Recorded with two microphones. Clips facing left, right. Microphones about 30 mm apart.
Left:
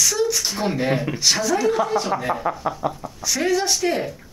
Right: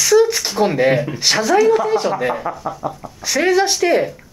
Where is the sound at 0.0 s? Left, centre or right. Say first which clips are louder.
Right 8 dB; right.